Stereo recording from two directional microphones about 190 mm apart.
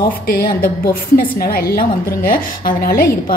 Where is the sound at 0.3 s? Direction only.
50° left (ahead or behind).